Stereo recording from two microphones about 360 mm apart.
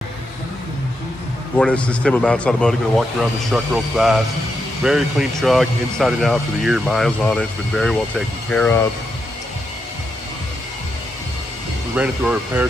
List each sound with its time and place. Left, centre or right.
1.6 s speech: centre
11.9 s speech: centre